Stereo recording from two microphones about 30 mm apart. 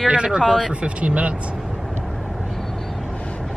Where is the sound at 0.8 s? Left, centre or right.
Right.